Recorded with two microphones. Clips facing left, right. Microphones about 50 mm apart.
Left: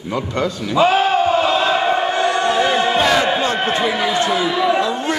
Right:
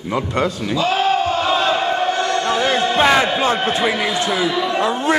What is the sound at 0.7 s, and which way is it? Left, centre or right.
Speech, left.